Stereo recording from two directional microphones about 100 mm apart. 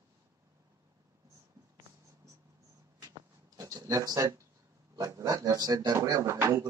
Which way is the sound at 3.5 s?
35° right (ahead or behind).